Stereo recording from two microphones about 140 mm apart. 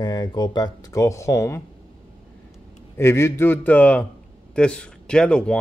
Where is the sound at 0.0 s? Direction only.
30° left (ahead or behind).